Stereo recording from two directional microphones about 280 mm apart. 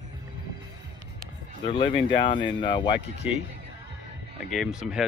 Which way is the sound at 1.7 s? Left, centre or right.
Centre.